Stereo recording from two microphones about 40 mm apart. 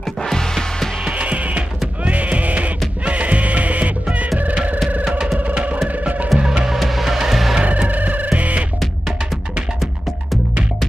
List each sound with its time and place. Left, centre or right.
0.2 s music: centre
1.0 s music: right
5.5 s music: right
6.3 s music: centre
7.6 s music: right